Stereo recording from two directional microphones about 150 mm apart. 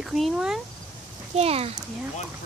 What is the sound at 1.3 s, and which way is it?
Speech, 40° right (ahead or behind).